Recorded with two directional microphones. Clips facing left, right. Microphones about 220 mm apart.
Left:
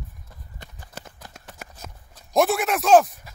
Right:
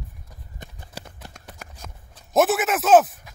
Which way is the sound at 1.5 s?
Centre (ahead or behind).